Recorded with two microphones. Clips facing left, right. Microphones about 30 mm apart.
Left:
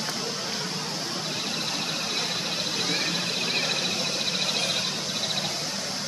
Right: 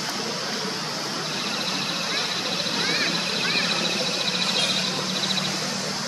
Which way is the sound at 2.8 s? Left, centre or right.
Right.